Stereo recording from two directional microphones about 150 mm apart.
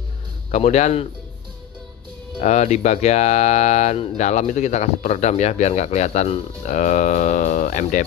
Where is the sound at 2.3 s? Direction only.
50° left (ahead or behind).